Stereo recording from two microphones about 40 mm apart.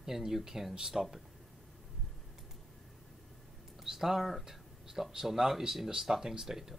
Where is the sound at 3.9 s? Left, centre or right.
Centre.